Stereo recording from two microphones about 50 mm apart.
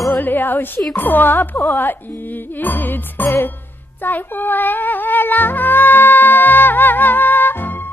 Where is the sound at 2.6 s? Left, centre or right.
Left.